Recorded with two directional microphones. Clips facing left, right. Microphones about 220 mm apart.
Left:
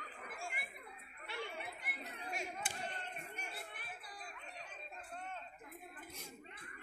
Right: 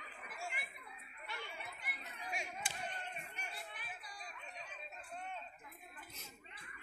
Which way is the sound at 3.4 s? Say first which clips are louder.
Left 1 dB; 55° left (ahead or behind).